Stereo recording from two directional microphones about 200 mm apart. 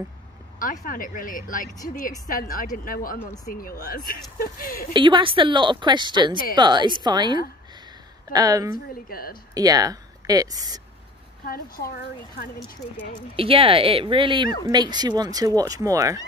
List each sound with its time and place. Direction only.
0.6 s speech: 45° left (ahead or behind)
4.9 s speech: 25° right (ahead or behind)
8.7 s speech: 45° left (ahead or behind)
9.5 s speech: 20° right (ahead or behind)
11.4 s speech: 45° left (ahead or behind)
13.4 s speech: 25° right (ahead or behind)